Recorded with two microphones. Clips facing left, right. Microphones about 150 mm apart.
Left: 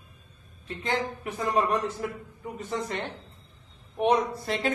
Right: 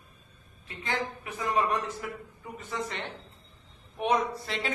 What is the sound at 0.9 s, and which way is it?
A man's voice, 40° left (ahead or behind).